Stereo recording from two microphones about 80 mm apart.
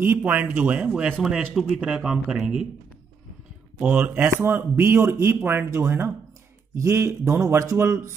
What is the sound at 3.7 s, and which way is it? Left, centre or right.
Speech, right.